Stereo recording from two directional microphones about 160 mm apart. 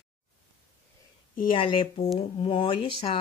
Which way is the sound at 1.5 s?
30° left (ahead or behind).